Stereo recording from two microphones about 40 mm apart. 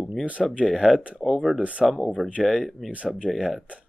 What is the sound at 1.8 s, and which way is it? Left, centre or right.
Speech, centre.